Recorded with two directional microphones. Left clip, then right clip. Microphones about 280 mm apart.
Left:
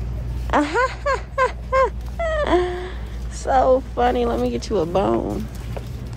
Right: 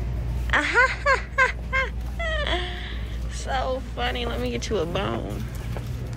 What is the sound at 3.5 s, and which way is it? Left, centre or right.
Speech, left.